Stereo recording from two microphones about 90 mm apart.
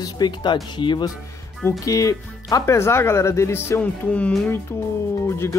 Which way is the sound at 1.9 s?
40° left (ahead or behind).